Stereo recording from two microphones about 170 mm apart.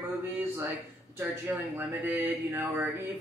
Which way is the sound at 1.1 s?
15° right (ahead or behind).